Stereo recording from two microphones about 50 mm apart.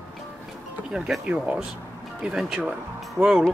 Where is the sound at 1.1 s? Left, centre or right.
Centre.